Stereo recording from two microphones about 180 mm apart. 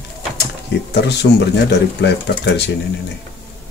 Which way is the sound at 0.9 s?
70° left (ahead or behind).